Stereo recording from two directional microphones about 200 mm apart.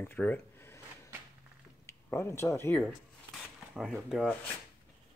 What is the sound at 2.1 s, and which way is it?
Speech, 15° left (ahead or behind).